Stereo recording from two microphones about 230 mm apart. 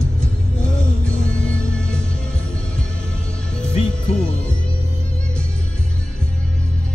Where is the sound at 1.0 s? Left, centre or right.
Centre.